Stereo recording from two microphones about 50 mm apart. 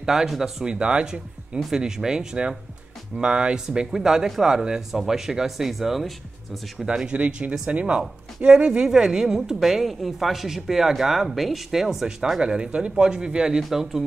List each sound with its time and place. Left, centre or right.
0.0 s a woman's voice: centre
0.7 s a woman's voice: centre
6.9 s a woman's voice: centre